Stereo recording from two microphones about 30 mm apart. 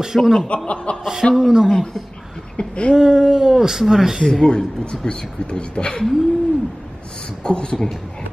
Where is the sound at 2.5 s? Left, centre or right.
Left.